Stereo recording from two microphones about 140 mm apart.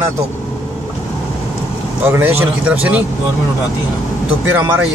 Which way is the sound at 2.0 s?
15° right (ahead or behind).